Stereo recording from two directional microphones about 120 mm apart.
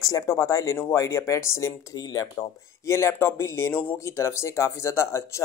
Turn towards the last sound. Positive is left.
turn(degrees=25)  # may be behind; listen again after turning